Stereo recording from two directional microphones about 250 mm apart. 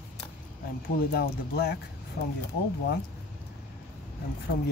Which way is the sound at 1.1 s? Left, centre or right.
Left.